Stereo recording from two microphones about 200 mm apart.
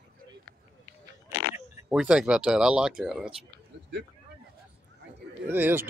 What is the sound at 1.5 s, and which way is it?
Speech, 5° right (ahead or behind).